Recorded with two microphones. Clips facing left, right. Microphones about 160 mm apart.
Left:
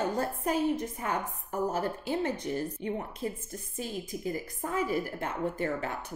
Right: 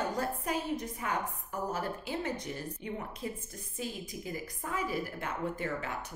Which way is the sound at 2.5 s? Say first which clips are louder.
Left 7 dB; 40° left (ahead or behind).